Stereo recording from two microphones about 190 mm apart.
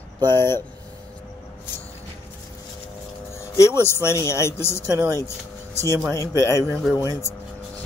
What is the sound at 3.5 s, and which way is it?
Speech, 15° left (ahead or behind).